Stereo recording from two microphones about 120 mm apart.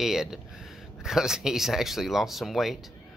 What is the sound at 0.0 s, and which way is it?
Speech, 5° right (ahead or behind).